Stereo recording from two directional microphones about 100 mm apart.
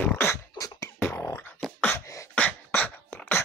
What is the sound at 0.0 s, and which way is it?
Beatboxing, 20° left (ahead or behind).